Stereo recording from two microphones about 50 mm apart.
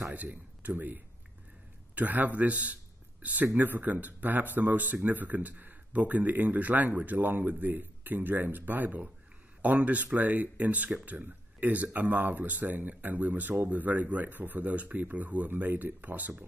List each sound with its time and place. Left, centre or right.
0.1 s speech: right